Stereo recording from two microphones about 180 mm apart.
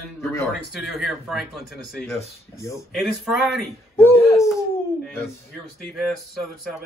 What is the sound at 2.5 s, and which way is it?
Speech, 15° left (ahead or behind).